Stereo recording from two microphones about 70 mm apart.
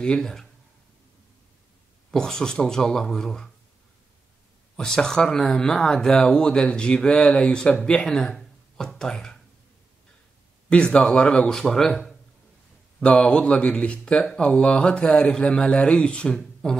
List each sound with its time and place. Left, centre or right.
0.0 s speech: centre
2.0 s speech: centre
4.7 s speech: centre
10.7 s speech: centre
13.0 s speech: centre